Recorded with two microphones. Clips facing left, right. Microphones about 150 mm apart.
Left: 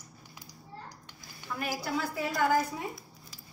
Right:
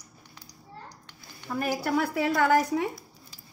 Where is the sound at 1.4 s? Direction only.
45° right (ahead or behind).